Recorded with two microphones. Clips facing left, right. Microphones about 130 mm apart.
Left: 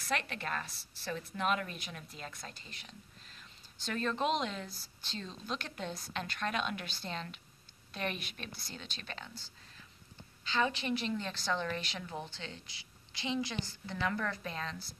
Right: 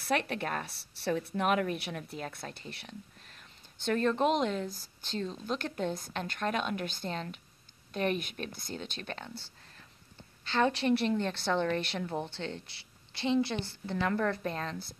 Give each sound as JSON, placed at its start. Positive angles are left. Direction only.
{"t": 0.1, "sound": "speech", "side_deg": -60}
{"t": 1.3, "sound": "a woman's voice", "side_deg": -55}
{"t": 10.5, "sound": "speech", "side_deg": -70}
{"t": 11.4, "sound": "a woman's voice", "side_deg": -25}
{"t": 11.7, "sound": "a woman's voice", "side_deg": -60}
{"t": 13.9, "sound": "a woman's voice", "side_deg": -40}